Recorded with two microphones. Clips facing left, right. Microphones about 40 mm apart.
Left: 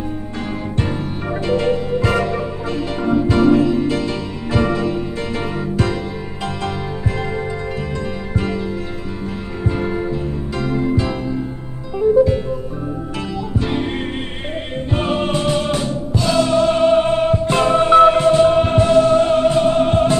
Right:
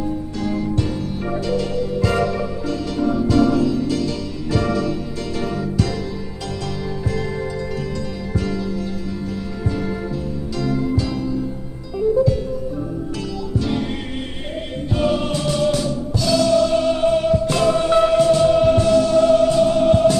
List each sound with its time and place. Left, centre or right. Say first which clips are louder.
0.4 s music: right 1 dB; left
8.4 s music: left 1 dB; left
13.6 s music: left 1 dB; left
14.9 s music: even; left